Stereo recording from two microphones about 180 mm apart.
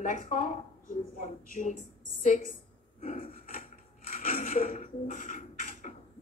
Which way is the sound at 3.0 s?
40° left (ahead or behind).